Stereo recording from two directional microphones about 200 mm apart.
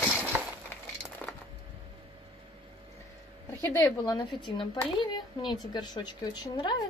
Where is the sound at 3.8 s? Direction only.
20° left (ahead or behind).